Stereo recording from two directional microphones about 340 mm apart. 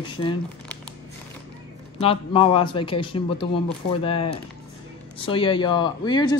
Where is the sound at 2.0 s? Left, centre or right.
Centre.